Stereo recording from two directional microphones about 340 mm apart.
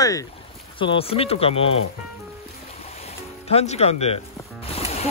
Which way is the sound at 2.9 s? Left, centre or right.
Centre.